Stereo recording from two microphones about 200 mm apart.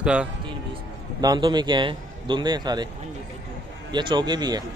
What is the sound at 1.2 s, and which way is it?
Speech, 20° right (ahead or behind).